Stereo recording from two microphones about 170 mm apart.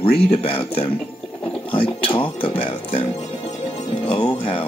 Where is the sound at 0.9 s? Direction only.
10° left (ahead or behind).